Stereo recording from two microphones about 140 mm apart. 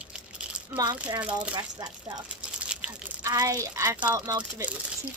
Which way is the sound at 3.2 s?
25° right (ahead or behind).